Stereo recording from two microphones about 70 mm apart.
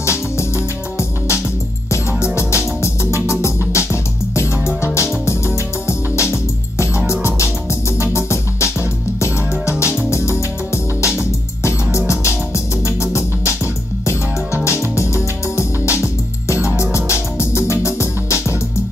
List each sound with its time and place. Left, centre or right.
0.0 s music: left
10.7 s music: left
14.0 s music: left